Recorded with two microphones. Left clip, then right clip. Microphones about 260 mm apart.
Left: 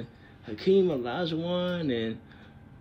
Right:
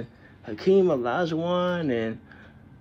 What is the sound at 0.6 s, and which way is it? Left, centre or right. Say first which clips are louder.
Speech: right 3 dB; centre.